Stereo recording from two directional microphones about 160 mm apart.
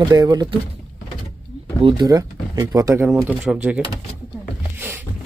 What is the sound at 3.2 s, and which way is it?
Speech, 10° right (ahead or behind).